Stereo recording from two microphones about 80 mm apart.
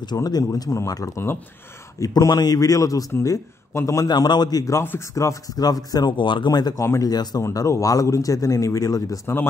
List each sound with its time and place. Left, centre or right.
0.0 s a man's voice: left
2.0 s a man's voice: left
4.1 s a man's voice: left
6.1 s speech: left
6.8 s a man's voice: left